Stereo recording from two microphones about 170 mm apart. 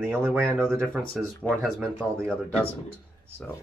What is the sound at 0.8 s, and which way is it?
Speech, 5° left (ahead or behind).